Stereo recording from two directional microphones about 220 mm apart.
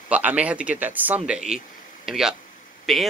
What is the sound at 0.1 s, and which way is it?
Speech, 5° right (ahead or behind).